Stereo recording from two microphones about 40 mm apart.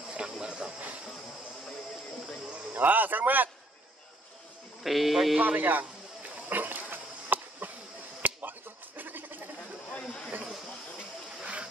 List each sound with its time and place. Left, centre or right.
0.3 s a sound: centre
0.7 s train: right
2.7 s speech: right
4.8 s speech: centre
5.4 s speech: right
6.5 s dog: right
8.2 s bleat: right
11.0 s a sound: right